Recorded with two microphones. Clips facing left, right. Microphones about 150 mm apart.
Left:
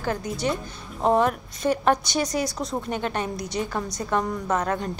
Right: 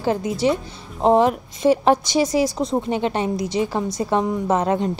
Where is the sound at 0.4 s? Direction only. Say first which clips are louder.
Right 7 dB; 20° right (ahead or behind).